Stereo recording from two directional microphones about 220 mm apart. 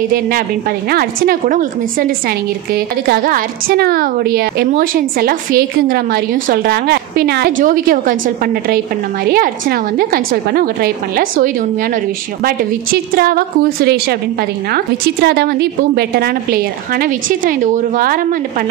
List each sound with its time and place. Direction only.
0.1 s a woman's voice: 40° right (ahead or behind)